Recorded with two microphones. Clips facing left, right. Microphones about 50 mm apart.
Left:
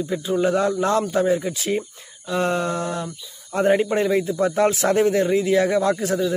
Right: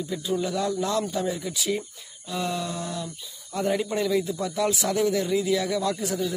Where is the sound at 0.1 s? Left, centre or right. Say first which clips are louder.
Left 7 dB; left.